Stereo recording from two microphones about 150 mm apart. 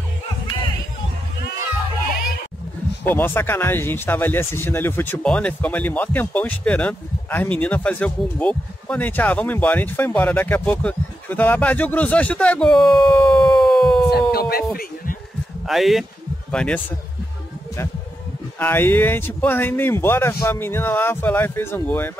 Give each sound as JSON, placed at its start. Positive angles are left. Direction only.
{"t": 3.0, "sound": "speech", "side_deg": 15}
{"t": 14.3, "sound": "music", "side_deg": 90}
{"t": 15.6, "sound": "speech", "side_deg": 0}
{"t": 18.6, "sound": "speech", "side_deg": 15}